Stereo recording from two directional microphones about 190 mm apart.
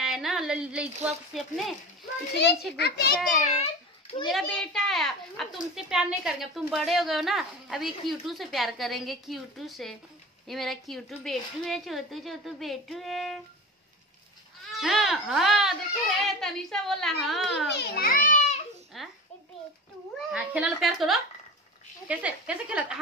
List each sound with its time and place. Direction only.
0.0 s speech: centre (ahead or behind)
2.7 s a child's voice: 60° left (ahead or behind)
3.4 s a sound: 35° left (ahead or behind)
4.3 s a child's voice: centre (ahead or behind)
14.7 s a child's voice: centre (ahead or behind)
17.7 s a child's voice: 50° left (ahead or behind)
18.9 s a sound: centre (ahead or behind)
20.2 s a child's voice: 5° right (ahead or behind)